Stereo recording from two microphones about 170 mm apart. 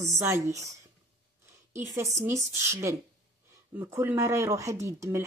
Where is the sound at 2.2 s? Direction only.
15° right (ahead or behind).